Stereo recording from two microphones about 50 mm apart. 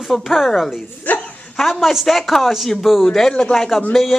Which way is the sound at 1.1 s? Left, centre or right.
Left.